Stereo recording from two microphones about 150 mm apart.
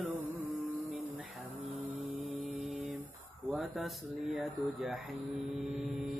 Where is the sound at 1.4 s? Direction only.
10° right (ahead or behind).